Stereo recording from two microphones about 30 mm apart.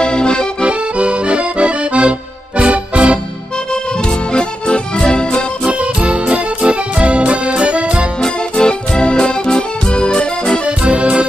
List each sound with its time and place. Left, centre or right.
0.0 s accordion: left
0.6 s accordion: right
3.7 s music: left
5.7 s music: right
8.6 s music: left
10.8 s music: right